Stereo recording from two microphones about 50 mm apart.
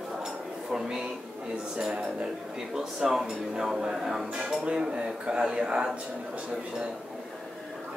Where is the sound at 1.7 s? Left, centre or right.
Centre.